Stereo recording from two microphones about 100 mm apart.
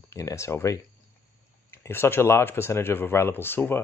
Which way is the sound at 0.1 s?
30° left (ahead or behind).